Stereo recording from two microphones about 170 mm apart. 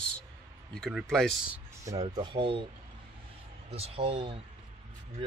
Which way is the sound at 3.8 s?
35° right (ahead or behind).